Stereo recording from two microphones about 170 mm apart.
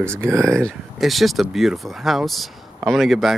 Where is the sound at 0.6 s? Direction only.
Centre (ahead or behind).